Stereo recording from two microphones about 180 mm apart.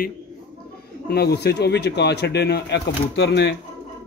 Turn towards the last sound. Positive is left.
turn(degrees=70)  # may be behind; listen again after turning